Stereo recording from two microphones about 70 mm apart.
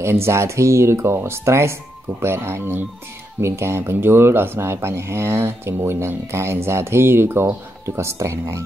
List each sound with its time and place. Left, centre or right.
0.0 s speech: right